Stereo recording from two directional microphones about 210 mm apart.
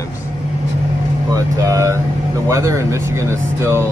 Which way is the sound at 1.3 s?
15° right (ahead or behind).